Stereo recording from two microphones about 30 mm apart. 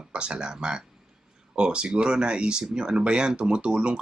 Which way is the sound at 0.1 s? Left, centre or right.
Right.